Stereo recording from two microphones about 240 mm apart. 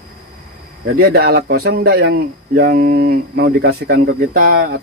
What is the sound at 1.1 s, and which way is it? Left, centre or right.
Speech, right.